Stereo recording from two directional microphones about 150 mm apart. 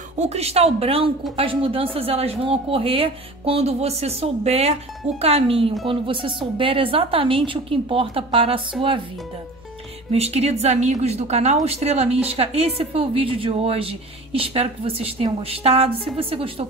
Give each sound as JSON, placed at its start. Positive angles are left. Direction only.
{"t": 0.3, "sound": "speech", "side_deg": -45}
{"t": 10.1, "sound": "speech", "side_deg": -45}